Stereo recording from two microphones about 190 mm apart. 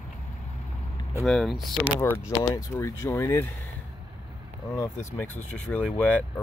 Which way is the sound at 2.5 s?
15° left (ahead or behind).